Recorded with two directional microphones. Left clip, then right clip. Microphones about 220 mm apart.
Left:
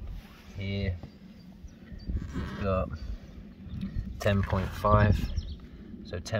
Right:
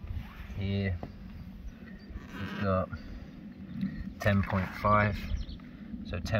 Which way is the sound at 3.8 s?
25° left (ahead or behind).